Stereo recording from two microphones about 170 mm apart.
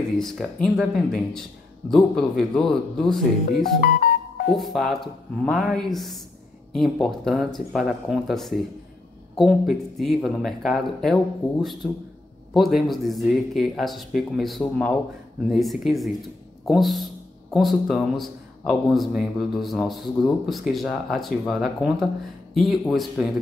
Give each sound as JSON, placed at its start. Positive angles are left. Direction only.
{"t": 0.2, "sound": "speech", "side_deg": 0}
{"t": 3.8, "sound": "music", "side_deg": 60}
{"t": 4.5, "sound": "speech", "side_deg": 0}